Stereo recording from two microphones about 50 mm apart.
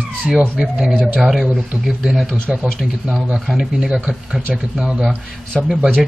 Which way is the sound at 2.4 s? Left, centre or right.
Right.